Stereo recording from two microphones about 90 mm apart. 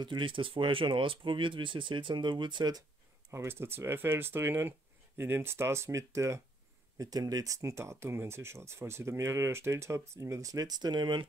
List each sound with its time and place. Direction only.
0.0 s speech: 65° right (ahead or behind)
3.3 s speech: 30° right (ahead or behind)
7.0 s speech: 45° right (ahead or behind)